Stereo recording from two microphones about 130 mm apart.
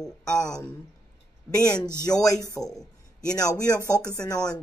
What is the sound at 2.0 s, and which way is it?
Speech, 25° left (ahead or behind).